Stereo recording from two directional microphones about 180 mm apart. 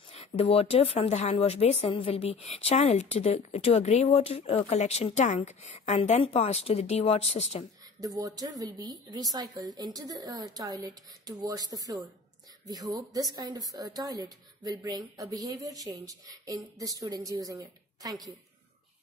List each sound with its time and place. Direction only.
0.1 s speech: 35° left (ahead or behind)
8.0 s a woman's voice: 20° right (ahead or behind)